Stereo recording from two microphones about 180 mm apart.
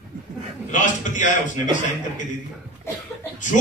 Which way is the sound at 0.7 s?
45° left (ahead or behind).